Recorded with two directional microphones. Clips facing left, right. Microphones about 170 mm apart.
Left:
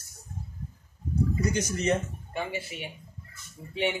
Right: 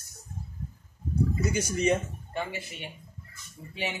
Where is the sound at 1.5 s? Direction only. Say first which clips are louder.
Right 1 dB; 10° right (ahead or behind).